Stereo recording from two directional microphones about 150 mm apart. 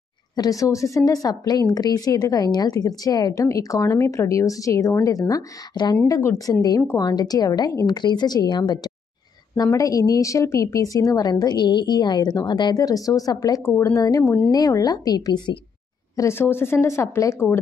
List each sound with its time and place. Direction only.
0.4 s a woman's voice: 20° left (ahead or behind)
16.2 s speech: 15° left (ahead or behind)